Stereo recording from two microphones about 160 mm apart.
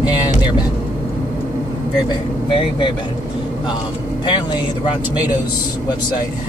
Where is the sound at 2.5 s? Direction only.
30° left (ahead or behind).